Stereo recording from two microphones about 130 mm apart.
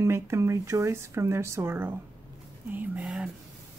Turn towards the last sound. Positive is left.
turn(degrees=-5)  # may be behind; listen again after turning